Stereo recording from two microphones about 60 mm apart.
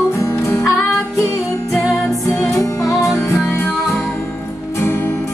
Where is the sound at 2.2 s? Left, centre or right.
Left.